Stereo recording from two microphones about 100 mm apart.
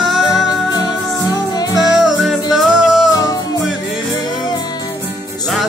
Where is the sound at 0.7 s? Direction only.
40° left (ahead or behind).